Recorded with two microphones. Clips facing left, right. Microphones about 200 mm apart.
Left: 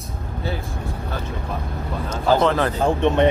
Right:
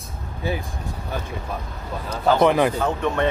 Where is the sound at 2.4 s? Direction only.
15° right (ahead or behind).